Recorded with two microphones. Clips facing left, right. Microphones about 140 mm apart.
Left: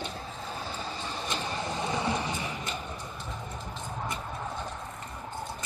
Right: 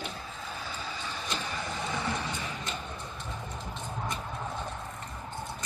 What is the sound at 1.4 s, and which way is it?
Bird, 25° left (ahead or behind).